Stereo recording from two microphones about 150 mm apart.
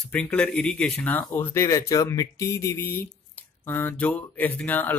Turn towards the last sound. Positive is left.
turn(degrees=10)  # may be behind; listen again after turning